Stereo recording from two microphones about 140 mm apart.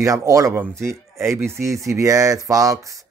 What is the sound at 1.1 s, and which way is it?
Speech, 20° right (ahead or behind).